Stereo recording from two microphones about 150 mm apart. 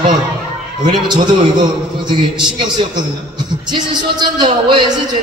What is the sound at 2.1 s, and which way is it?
A man's voice, 30° right (ahead or behind).